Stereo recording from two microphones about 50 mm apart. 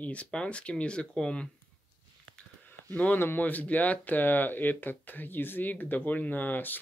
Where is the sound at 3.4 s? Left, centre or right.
Left.